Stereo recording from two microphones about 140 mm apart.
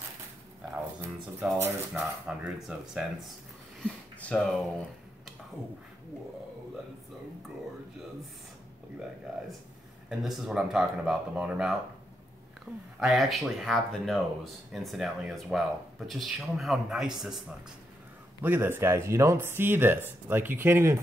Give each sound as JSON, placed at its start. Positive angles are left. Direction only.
{"t": 1.9, "sound": "speech", "side_deg": -10}
{"t": 3.8, "sound": "speech", "side_deg": 5}
{"t": 10.0, "sound": "speech", "side_deg": -5}
{"t": 13.0, "sound": "speech", "side_deg": 0}
{"t": 18.4, "sound": "speech", "side_deg": -15}